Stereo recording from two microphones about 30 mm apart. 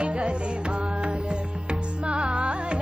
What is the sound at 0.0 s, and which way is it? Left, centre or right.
Music, right.